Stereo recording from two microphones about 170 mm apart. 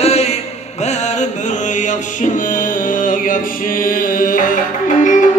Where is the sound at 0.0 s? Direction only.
40° left (ahead or behind).